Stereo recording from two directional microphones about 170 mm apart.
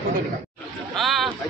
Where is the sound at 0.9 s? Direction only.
Centre (ahead or behind).